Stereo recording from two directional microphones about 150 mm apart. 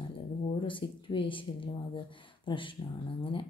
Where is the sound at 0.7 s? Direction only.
35° left (ahead or behind).